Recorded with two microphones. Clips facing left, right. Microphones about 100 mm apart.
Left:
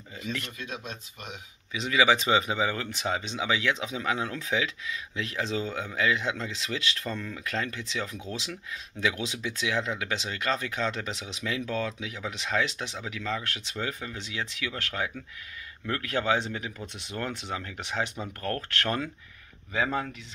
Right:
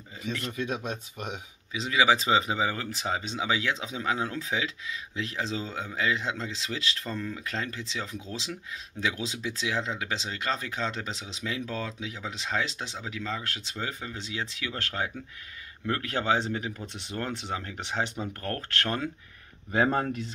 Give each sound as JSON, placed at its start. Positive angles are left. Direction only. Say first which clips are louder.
{"t": 1.7, "sound": "speech", "louder": "even", "side_deg": -30}